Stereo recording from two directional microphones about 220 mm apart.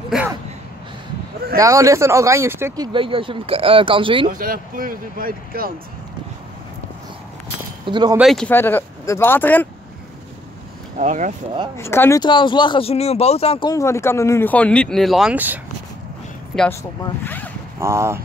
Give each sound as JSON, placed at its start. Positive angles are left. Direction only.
{"t": 1.6, "sound": "speech", "side_deg": -15}
{"t": 4.3, "sound": "speech", "side_deg": -40}
{"t": 7.8, "sound": "speech", "side_deg": -20}
{"t": 8.2, "sound": "speech", "side_deg": 0}
{"t": 11.0, "sound": "speech", "side_deg": -35}
{"t": 11.7, "sound": "speech", "side_deg": 10}
{"t": 17.7, "sound": "speech", "side_deg": -10}